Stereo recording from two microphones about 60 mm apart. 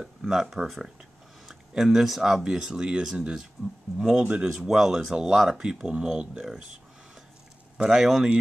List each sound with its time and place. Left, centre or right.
0.0 s speech: centre
4.2 s speech: right
4.6 s speech: centre
7.7 s speech: centre